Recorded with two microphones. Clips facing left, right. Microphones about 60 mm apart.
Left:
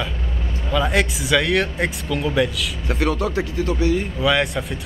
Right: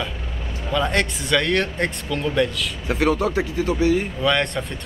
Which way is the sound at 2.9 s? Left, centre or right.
Centre.